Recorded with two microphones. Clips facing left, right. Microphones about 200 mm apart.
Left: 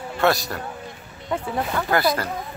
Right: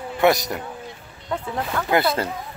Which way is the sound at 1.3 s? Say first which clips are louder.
Left 1 dB; 5° left (ahead or behind).